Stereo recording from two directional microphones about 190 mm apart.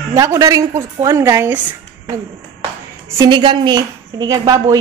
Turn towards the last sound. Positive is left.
turn(degrees=-20)  # may be behind; listen again after turning